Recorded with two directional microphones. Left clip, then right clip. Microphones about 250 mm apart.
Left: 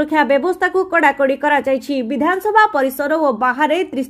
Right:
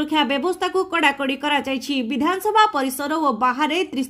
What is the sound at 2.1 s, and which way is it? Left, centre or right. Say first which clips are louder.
A woman's voice: left 4 dB; centre.